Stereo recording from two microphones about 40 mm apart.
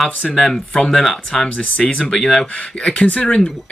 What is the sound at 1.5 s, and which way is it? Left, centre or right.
Speech, left.